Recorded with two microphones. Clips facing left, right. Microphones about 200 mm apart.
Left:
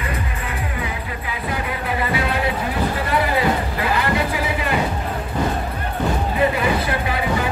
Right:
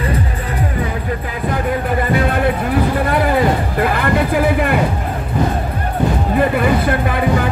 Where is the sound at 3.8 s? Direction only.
55° right (ahead or behind).